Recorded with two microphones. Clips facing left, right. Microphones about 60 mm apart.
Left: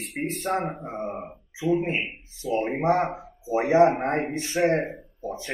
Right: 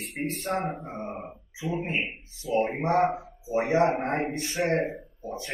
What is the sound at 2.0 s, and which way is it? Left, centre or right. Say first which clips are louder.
Speech: left 3 dB; centre.